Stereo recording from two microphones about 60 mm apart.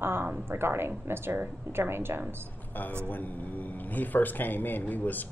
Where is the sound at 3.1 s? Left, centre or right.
Left.